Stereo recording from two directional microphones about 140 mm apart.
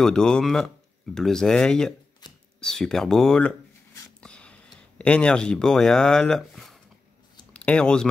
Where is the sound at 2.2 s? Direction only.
30° left (ahead or behind).